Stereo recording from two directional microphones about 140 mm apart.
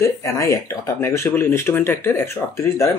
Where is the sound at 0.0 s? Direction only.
20° left (ahead or behind).